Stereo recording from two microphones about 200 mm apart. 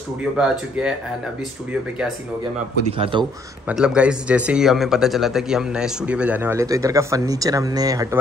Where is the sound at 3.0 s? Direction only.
25° right (ahead or behind).